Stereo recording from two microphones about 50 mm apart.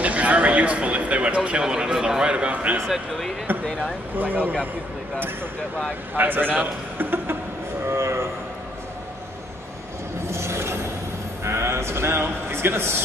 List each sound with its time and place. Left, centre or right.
0.0 s a man's voice: right
3.6 s speech: centre
4.1 s speech: right
6.1 s speech: right
7.8 s a sound: right
10.3 s a sound: right
11.4 s speech: right